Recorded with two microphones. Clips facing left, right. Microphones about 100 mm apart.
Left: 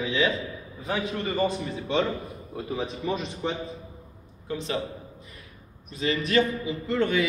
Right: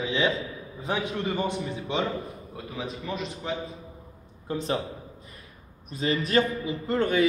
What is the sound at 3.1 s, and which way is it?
Speech, centre (ahead or behind).